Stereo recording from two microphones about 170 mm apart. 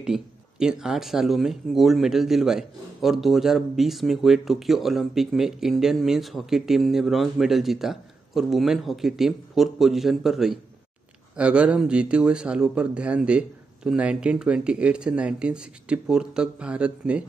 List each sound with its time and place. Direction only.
0.0 s speech: 5° right (ahead or behind)